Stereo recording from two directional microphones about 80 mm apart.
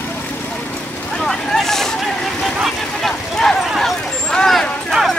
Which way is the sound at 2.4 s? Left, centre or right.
Centre.